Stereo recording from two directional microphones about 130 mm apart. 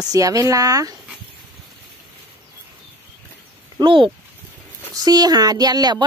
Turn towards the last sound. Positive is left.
turn(degrees=-30)  # may be behind; listen again after turning